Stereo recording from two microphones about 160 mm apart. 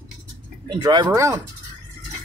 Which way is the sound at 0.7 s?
25° right (ahead or behind).